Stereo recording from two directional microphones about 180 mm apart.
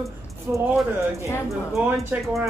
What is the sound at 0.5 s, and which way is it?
Speech, 10° right (ahead or behind).